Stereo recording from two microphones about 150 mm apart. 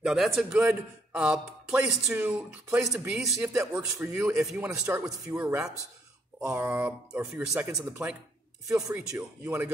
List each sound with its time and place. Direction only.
0.0 s a man's voice: centre (ahead or behind)
8.6 s speech: 20° right (ahead or behind)